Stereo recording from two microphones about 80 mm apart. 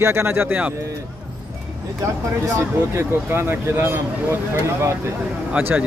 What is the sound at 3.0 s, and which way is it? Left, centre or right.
Speech, right.